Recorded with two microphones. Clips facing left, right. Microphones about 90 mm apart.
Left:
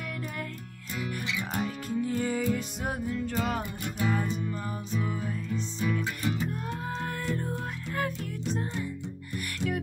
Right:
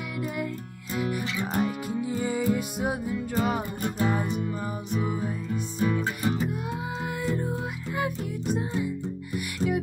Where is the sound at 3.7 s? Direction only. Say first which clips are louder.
Right 5 dB; 40° right (ahead or behind).